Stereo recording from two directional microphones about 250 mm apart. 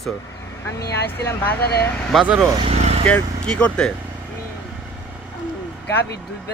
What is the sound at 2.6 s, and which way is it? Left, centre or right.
Vehicle, right.